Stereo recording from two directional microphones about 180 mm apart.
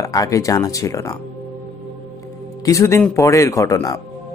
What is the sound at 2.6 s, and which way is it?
A man's voice, 15° left (ahead or behind).